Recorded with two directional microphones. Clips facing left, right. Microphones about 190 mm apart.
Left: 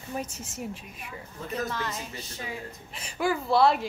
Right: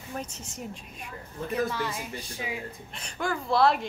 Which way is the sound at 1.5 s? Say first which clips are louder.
Right 3 dB; 10° right (ahead or behind).